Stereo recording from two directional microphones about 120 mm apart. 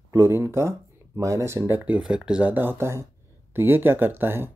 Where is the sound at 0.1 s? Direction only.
20° right (ahead or behind).